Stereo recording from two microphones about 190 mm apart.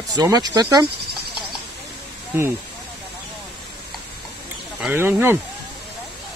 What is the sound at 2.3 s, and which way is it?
Speech, 10° right (ahead or behind).